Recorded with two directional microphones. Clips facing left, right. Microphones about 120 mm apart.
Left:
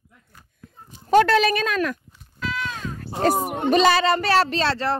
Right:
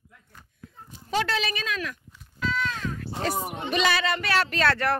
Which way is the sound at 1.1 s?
55° left (ahead or behind).